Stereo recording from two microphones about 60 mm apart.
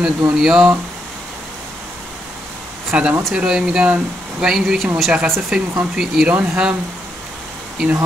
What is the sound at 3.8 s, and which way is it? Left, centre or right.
Speech, right.